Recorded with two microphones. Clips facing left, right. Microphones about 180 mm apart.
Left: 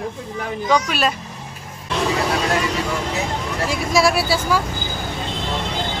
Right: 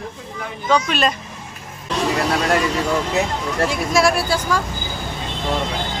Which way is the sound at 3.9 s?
5° left (ahead or behind).